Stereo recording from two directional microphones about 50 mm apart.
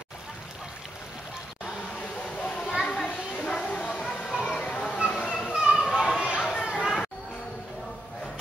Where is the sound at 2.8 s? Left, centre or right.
Left.